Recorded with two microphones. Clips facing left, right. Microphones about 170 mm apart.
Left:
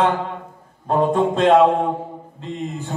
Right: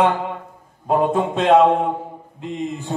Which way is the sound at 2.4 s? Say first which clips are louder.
Right 2 dB; 15° right (ahead or behind).